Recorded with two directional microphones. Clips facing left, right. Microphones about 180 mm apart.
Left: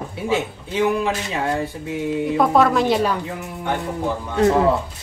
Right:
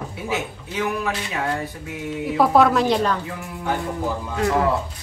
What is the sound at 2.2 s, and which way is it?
A woman's voice, 5° right (ahead or behind).